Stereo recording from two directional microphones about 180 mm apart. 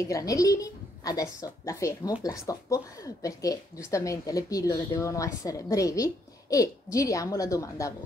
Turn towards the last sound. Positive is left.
turn(degrees=15)  # may be behind; listen again after turning